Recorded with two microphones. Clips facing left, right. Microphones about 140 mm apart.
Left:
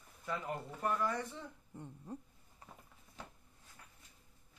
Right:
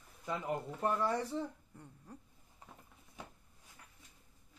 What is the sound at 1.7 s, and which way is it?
Owl, 20° left (ahead or behind).